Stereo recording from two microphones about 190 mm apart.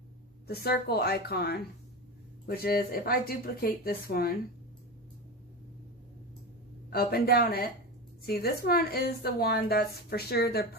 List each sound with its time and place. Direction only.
0.5 s a woman's voice: 55° left (ahead or behind)
6.9 s a woman's voice: 55° left (ahead or behind)